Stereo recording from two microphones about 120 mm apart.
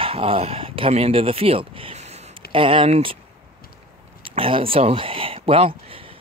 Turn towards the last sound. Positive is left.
turn(degrees=-50)  # may be behind; listen again after turning